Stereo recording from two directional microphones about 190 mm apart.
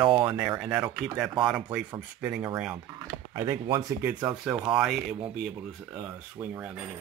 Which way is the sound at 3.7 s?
20° right (ahead or behind).